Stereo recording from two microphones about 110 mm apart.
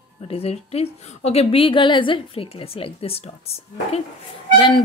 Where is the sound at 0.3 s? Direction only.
65° left (ahead or behind).